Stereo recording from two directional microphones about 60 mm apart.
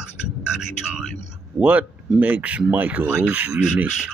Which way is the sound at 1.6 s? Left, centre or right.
Right.